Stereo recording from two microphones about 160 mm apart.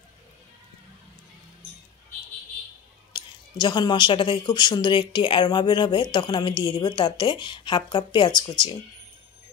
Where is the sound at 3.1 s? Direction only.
30° left (ahead or behind).